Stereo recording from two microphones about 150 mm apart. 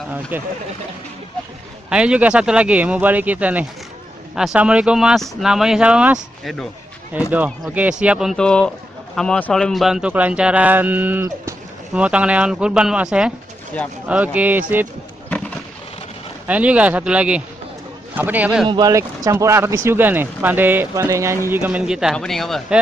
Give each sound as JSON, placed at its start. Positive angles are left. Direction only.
{"t": 0.3, "sound": "speech", "side_deg": -10}
{"t": 1.9, "sound": "speech", "side_deg": -5}
{"t": 16.4, "sound": "speech", "side_deg": -10}
{"t": 18.7, "sound": "speech", "side_deg": -25}